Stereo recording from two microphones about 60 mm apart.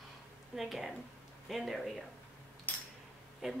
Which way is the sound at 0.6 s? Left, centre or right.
Centre.